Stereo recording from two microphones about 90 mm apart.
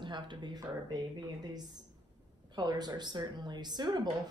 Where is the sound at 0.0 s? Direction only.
60° right (ahead or behind).